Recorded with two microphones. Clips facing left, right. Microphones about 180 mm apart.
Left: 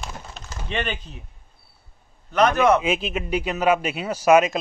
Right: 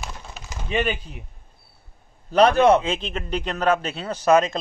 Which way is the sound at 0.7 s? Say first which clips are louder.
Right 4 dB; 5° right (ahead or behind).